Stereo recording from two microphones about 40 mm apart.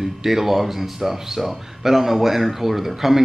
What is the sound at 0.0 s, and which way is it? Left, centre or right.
Speech, centre.